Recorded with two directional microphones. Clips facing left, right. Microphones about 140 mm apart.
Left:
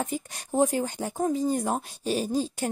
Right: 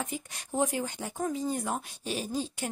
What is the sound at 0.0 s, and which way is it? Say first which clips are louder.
Speech: left 5 dB; 40° left (ahead or behind).